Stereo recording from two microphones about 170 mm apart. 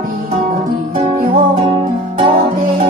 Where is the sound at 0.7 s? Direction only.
55° right (ahead or behind).